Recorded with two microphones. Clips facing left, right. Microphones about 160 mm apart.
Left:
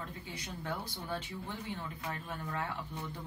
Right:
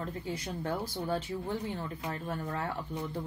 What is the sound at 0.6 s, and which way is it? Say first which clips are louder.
Speech: right 6 dB; 35° right (ahead or behind).